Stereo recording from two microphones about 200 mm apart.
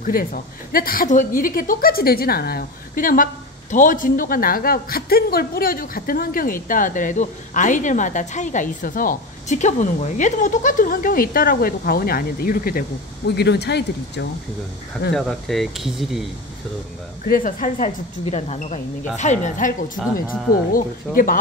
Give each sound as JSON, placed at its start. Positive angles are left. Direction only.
{"t": 0.0, "sound": "speech", "side_deg": 45}
{"t": 15.1, "sound": "speech", "side_deg": 0}
{"t": 17.2, "sound": "speech", "side_deg": 40}
{"t": 20.7, "sound": "speech", "side_deg": 45}